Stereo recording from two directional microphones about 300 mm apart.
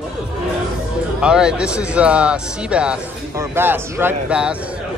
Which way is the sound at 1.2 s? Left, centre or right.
Centre.